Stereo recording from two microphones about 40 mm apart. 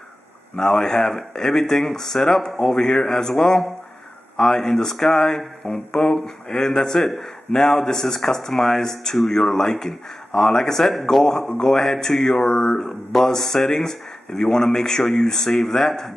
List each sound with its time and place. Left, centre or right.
0.6 s speech: centre